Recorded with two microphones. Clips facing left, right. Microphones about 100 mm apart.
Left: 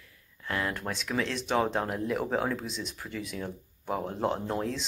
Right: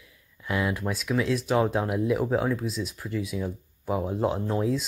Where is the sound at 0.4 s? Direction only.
10° right (ahead or behind).